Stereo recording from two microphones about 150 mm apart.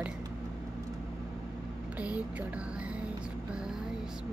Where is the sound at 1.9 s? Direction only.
10° right (ahead or behind).